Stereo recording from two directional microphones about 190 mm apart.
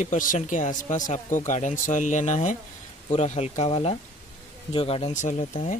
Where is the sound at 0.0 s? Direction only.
40° left (ahead or behind).